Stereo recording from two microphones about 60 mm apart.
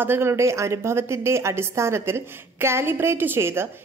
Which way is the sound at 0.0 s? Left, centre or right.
Right.